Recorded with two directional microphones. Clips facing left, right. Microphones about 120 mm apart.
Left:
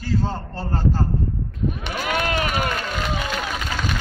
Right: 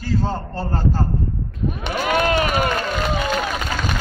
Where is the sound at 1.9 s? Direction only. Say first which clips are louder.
Right 7 dB; 35° right (ahead or behind).